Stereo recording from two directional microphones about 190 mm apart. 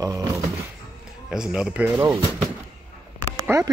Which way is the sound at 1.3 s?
5° right (ahead or behind).